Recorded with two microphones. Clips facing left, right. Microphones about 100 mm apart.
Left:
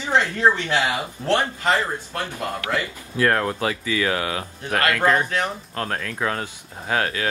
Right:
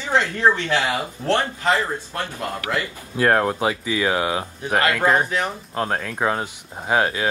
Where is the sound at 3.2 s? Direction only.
25° right (ahead or behind).